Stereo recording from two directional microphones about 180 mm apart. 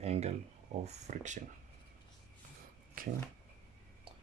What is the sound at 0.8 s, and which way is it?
Speech, 40° right (ahead or behind).